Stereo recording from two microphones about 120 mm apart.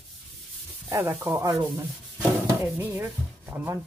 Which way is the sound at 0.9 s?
20° right (ahead or behind).